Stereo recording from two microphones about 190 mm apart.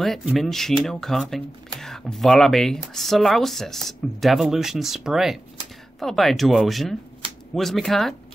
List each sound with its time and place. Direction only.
0.0 s speech: centre (ahead or behind)